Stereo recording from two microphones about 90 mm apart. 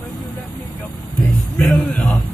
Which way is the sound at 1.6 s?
5° left (ahead or behind).